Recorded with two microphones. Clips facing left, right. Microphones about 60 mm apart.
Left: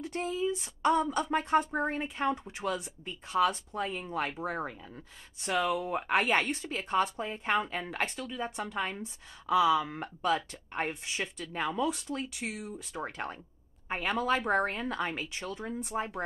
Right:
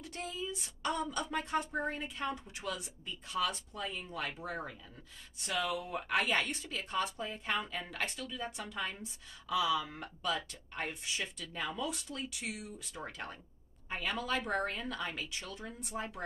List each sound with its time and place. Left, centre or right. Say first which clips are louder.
0.0 s speech: left 9 dB; left